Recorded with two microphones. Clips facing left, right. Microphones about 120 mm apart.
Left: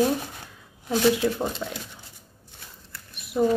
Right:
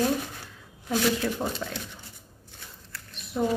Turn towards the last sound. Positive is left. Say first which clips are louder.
# left 5 dB
turn(degrees=10)  # may be behind; listen again after turning